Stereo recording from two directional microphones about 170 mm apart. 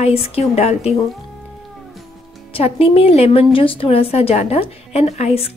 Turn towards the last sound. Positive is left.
turn(degrees=35)  # may be behind; listen again after turning